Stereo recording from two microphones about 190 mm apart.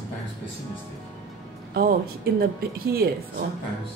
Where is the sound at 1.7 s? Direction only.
50° right (ahead or behind).